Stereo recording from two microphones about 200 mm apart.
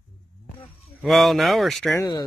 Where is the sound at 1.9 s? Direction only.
15° left (ahead or behind).